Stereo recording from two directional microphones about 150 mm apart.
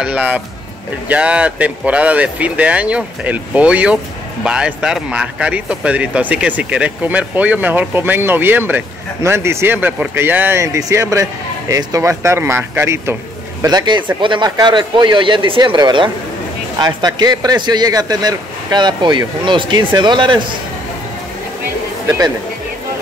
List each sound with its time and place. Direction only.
0.0 s speech: 10° right (ahead or behind); by 20.4 s 30° right (ahead or behind)